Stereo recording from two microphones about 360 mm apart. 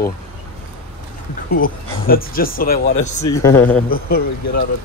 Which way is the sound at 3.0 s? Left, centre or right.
Left.